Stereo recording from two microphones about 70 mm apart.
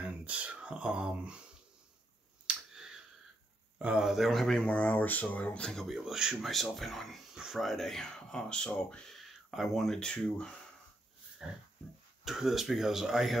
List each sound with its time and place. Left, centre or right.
0.0 s speech: centre
2.4 s finger snapping: centre
3.7 s speech: centre
4.0 s speech: centre
4.6 s speech: centre
5.7 s speech: centre
9.1 s speech: centre
11.4 s pig: centre
12.3 s speech: centre